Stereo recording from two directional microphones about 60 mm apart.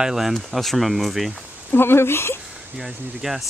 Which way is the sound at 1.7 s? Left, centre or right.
Left.